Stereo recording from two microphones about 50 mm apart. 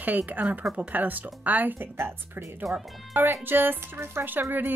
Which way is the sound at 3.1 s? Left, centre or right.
Right.